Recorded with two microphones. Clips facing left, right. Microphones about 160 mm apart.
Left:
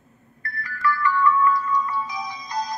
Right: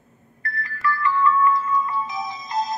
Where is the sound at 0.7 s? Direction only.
25° right (ahead or behind).